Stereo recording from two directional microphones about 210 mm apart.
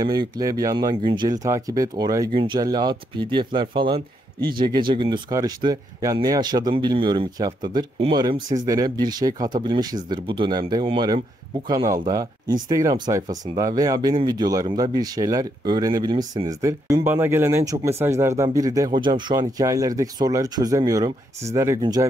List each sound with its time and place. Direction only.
0.0 s speech: 20° right (ahead or behind)